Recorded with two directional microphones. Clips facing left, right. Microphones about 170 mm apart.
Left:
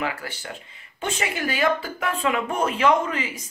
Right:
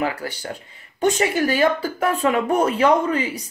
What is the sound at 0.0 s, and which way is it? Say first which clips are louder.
Speech: right 5 dB; 35° right (ahead or behind).